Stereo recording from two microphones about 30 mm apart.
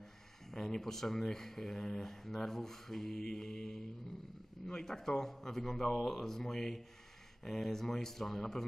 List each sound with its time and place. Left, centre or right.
0.5 s speech: centre
4.8 s speech: centre